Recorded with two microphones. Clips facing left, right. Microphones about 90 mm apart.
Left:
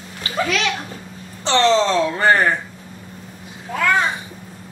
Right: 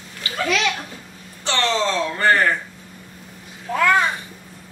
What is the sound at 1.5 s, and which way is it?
Speech, 25° left (ahead or behind).